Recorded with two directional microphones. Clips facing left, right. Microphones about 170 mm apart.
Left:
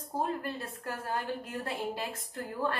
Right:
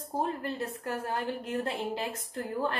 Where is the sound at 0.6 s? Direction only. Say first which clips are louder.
Right 5 dB; 20° right (ahead or behind).